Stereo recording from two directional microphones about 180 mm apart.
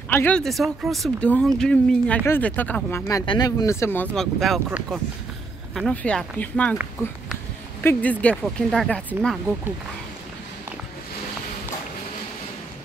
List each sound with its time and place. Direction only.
0.1 s a woman's voice: 10° left (ahead or behind)